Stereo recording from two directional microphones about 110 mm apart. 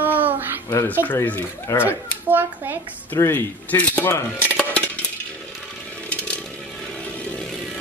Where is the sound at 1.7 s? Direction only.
25° left (ahead or behind).